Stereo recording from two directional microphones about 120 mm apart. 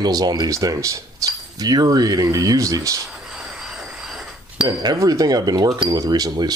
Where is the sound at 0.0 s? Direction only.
35° right (ahead or behind).